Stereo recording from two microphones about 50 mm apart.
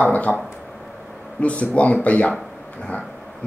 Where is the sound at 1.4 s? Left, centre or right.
Left.